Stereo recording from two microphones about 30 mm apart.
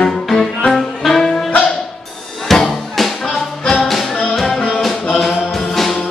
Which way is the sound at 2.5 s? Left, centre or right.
Centre.